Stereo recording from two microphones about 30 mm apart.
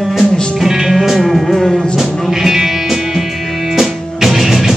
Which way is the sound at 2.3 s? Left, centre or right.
Centre.